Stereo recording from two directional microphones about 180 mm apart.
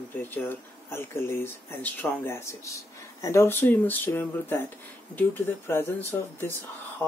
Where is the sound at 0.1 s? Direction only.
10° left (ahead or behind).